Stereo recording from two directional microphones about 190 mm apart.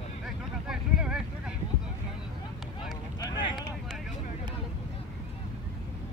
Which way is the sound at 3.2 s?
20° left (ahead or behind).